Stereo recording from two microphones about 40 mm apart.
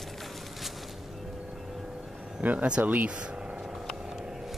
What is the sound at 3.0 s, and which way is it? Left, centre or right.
Vehicle, right.